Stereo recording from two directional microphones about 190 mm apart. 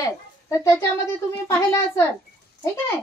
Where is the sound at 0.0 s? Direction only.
15° left (ahead or behind).